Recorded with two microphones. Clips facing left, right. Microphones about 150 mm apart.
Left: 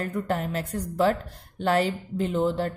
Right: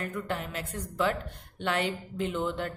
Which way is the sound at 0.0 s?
35° left (ahead or behind).